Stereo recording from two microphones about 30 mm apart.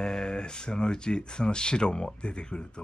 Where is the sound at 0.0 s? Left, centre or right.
Left.